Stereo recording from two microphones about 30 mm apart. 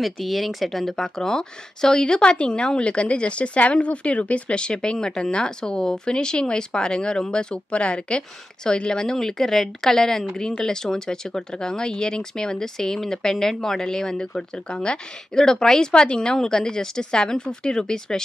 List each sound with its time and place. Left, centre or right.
0.0 s speech: centre
0.9 s a woman's voice: centre
7.5 s a woman's voice: left
15.3 s speech: centre
15.9 s a woman's voice: left